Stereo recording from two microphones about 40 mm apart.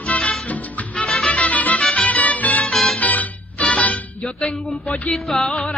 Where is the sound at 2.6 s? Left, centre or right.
Centre.